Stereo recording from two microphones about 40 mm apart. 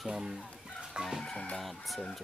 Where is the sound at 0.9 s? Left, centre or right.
Right.